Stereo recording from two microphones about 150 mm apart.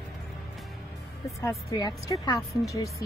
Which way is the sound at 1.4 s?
25° left (ahead or behind).